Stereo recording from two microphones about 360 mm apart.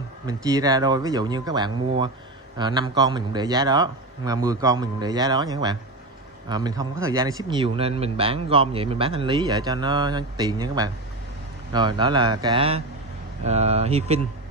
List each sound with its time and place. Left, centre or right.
0.3 s speech: centre